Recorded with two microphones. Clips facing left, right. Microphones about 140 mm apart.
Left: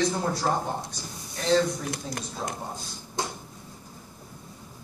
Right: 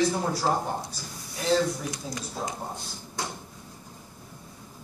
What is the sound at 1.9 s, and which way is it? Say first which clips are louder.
Speech: left 1 dB; 60° left (ahead or behind).